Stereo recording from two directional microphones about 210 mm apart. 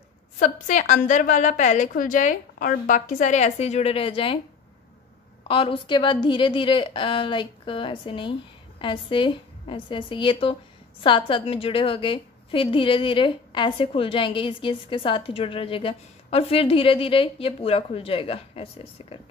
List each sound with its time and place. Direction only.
0.4 s a woman's voice: 35° left (ahead or behind)
5.5 s a woman's voice: 25° left (ahead or behind)